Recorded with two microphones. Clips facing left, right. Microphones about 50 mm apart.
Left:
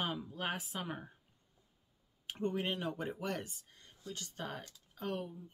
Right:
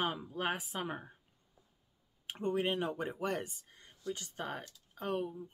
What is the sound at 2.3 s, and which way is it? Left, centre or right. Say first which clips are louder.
Speech: right 3 dB; centre.